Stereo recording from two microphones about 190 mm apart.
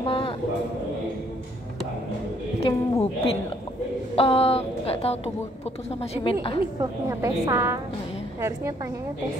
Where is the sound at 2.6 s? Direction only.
30° left (ahead or behind).